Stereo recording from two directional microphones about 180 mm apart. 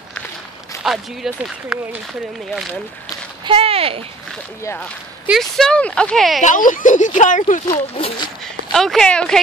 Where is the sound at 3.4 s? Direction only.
30° right (ahead or behind).